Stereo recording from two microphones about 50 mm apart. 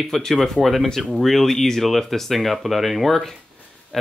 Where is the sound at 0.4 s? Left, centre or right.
Centre.